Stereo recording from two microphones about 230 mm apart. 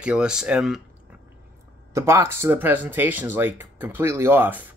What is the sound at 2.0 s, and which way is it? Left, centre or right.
Speech, centre.